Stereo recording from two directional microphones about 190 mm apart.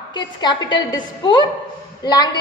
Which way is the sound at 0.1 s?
25° left (ahead or behind).